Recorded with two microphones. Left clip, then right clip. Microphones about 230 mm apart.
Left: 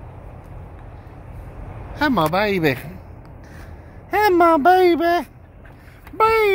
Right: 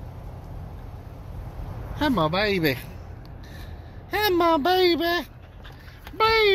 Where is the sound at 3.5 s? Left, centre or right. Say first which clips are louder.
Left 2 dB; centre.